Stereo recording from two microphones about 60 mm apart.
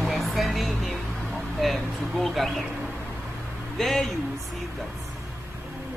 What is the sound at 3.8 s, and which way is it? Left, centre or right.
Speech, centre.